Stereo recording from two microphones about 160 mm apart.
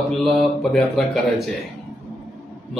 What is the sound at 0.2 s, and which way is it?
Speech, centre (ahead or behind).